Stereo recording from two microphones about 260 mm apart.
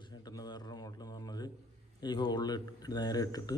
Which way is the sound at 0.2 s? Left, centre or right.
Centre.